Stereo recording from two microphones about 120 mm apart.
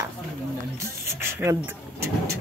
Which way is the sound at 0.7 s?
20° right (ahead or behind).